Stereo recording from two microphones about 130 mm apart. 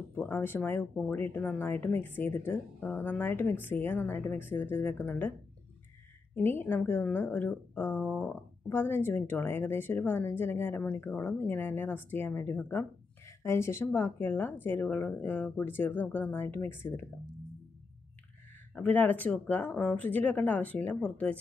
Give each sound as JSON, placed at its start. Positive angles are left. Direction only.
{"t": 0.1, "sound": "speech", "side_deg": 15}
{"t": 6.3, "sound": "speech", "side_deg": 15}
{"t": 18.8, "sound": "speech", "side_deg": 15}